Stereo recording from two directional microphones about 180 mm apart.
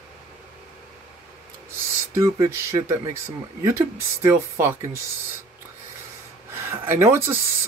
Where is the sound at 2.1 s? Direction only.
15° right (ahead or behind).